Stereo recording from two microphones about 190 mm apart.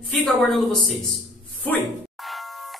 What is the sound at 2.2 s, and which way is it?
Music, centre (ahead or behind).